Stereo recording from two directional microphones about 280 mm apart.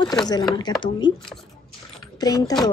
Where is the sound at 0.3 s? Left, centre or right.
Centre.